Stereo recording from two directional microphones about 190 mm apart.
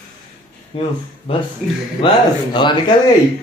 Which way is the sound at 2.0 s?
25° left (ahead or behind).